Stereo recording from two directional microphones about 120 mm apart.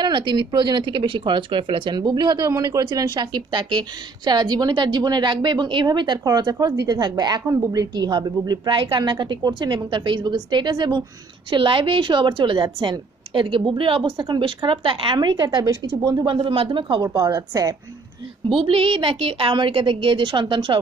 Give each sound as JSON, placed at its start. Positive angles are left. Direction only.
{"t": 0.0, "sound": "a woman's voice", "side_deg": -40}
{"t": 16.3, "sound": "a woman's voice", "side_deg": -45}
{"t": 17.2, "sound": "a woman's voice", "side_deg": -30}
{"t": 18.6, "sound": "a woman's voice", "side_deg": -50}